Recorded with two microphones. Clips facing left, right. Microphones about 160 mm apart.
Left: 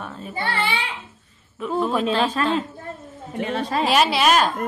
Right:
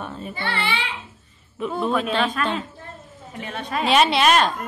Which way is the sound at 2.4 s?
30° left (ahead or behind).